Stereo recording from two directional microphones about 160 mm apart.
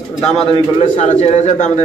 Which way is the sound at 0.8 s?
45° left (ahead or behind).